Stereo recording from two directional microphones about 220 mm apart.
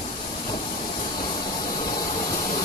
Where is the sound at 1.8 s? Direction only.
20° left (ahead or behind).